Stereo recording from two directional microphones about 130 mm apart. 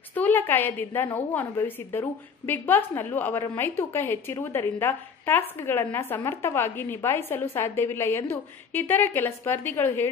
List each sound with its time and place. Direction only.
0.1 s a woman's voice: 15° left (ahead or behind)